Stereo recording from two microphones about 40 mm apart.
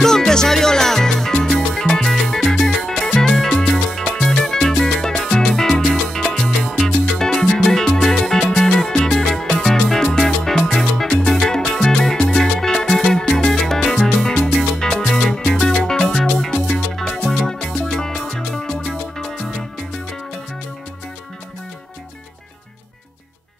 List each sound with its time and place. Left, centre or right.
0.0 s salsa music: centre
2.5 s music: centre
3.1 s salsa music: centre
4.2 s music: centre
6.3 s salsa music: centre
6.8 s music: centre
10.2 s salsa music: centre
11.2 s music: centre
13.5 s salsa music: centre
13.8 s music: centre
17.2 s music: centre
17.7 s salsa music: centre